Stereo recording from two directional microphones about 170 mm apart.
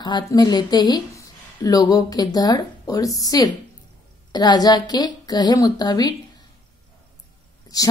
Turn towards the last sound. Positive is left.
turn(degrees=20)  # may be behind; listen again after turning